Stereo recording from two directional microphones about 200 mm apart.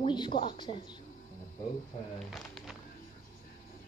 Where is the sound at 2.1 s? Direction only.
Centre (ahead or behind).